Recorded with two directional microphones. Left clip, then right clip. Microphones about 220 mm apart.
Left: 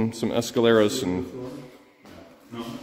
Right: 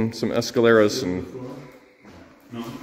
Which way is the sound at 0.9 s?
15° left (ahead or behind).